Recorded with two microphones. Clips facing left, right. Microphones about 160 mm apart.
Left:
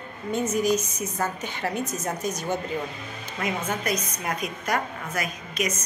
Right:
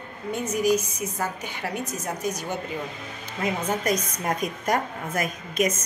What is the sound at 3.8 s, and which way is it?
A woman's voice, 40° right (ahead or behind).